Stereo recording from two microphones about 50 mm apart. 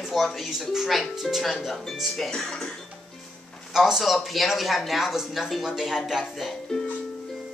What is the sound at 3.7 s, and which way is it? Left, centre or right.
Speech, centre.